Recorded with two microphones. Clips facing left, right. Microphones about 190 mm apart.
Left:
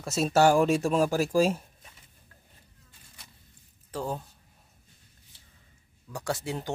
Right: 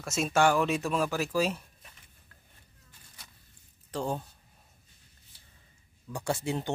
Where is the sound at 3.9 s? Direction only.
5° left (ahead or behind).